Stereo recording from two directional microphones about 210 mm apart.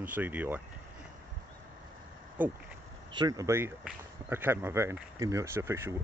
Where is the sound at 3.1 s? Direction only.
20° right (ahead or behind).